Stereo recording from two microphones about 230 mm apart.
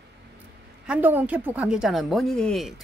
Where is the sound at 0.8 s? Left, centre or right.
Centre.